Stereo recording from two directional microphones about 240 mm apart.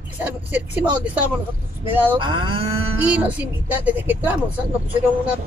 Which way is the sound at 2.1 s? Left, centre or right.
Centre.